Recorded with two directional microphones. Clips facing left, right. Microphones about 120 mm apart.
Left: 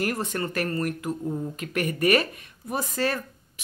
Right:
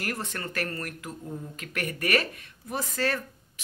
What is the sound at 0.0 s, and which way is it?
Speech, 20° left (ahead or behind).